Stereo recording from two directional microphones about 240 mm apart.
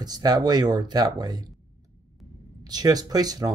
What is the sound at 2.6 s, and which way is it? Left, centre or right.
Speech, centre.